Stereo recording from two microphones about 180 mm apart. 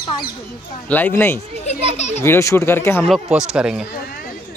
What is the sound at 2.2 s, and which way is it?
Speech, 15° left (ahead or behind).